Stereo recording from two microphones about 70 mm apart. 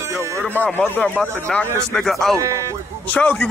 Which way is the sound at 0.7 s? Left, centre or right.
Left.